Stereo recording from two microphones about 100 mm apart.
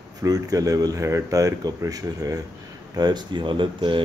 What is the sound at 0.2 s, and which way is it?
Speech, 35° right (ahead or behind).